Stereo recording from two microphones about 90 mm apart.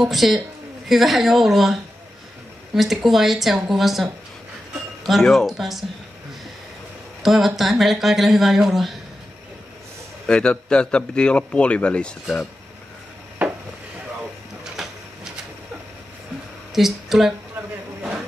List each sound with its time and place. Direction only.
0.0 s speech: centre (ahead or behind)
7.2 s speech: 5° right (ahead or behind)
10.2 s a man's voice: 10° left (ahead or behind)
14.8 s printer: 5° right (ahead or behind)
16.7 s speech: 5° right (ahead or behind)